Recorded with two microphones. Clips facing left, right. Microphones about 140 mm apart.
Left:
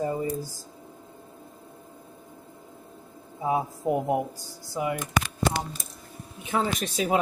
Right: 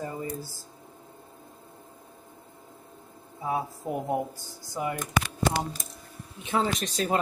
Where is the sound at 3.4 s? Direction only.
20° left (ahead or behind).